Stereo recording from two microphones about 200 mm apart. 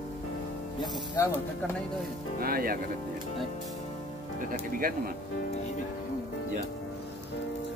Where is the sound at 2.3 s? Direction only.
45° right (ahead or behind).